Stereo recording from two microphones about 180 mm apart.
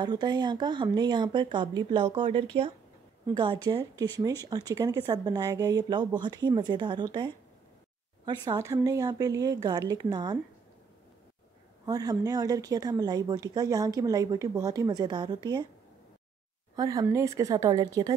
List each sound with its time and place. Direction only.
0.0 s speech: 25° right (ahead or behind)
8.5 s speech: 20° right (ahead or behind)
11.8 s speech: 20° right (ahead or behind)
16.7 s speech: 20° right (ahead or behind)